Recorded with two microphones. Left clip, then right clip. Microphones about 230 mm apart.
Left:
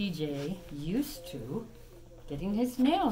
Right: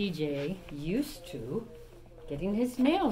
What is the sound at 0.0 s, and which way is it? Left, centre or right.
Speech, left.